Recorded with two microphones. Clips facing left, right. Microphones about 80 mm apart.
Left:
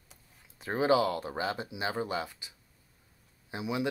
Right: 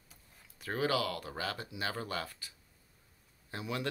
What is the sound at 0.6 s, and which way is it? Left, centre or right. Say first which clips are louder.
Speech: left 6 dB; left.